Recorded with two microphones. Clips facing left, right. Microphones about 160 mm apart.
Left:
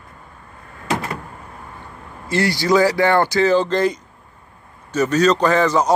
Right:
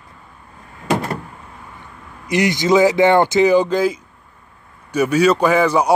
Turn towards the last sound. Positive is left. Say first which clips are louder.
# right 1 dB
turn(degrees=-10)  # may be behind; listen again after turning